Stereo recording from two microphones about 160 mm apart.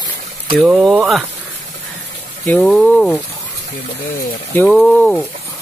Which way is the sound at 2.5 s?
5° left (ahead or behind).